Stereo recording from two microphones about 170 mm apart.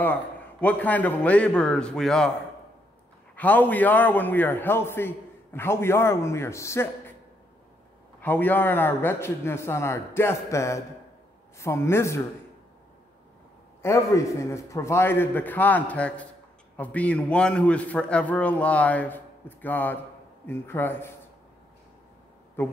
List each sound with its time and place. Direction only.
0.0 s a man's voice: 10° left (ahead or behind)
3.3 s a man's voice: 10° left (ahead or behind)
8.2 s a man's voice: 10° left (ahead or behind)
13.8 s a man's voice: 15° left (ahead or behind)
22.6 s speech: 10° left (ahead or behind)